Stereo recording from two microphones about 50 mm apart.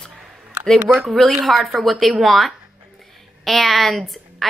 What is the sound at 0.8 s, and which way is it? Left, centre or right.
Speech, right.